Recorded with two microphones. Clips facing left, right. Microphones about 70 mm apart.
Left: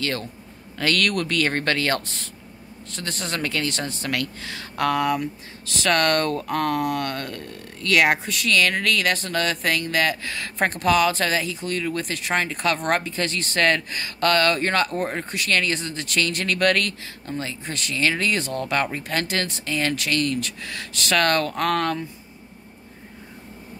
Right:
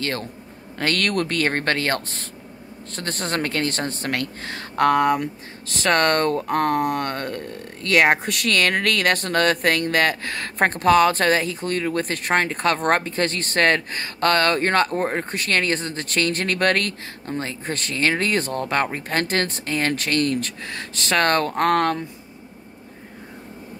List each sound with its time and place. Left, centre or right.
0.0 s speech: right
8.2 s speech: right